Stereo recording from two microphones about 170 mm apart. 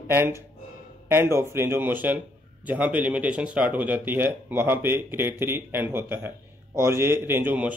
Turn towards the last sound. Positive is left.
turn(degrees=-10)  # may be behind; listen again after turning